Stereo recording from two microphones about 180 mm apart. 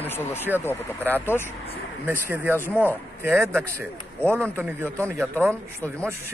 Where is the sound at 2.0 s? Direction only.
10° right (ahead or behind).